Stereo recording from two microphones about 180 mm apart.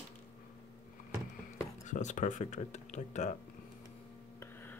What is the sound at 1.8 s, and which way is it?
Speech, 40° left (ahead or behind).